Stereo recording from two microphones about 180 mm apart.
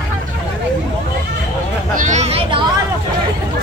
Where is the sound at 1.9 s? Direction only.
45° right (ahead or behind).